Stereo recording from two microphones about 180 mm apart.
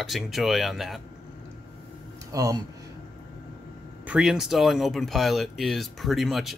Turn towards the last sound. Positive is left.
turn(degrees=0)  # may be behind; listen again after turning